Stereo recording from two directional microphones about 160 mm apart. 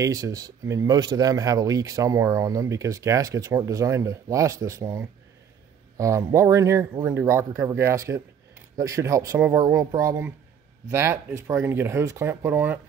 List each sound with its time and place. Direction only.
0.0 s speech: 20° right (ahead or behind)